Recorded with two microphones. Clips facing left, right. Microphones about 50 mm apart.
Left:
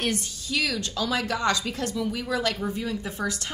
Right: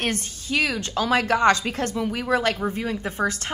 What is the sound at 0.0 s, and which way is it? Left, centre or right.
A woman's voice, right.